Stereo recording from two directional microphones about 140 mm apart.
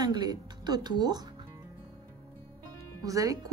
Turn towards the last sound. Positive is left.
turn(degrees=-25)  # may be behind; listen again after turning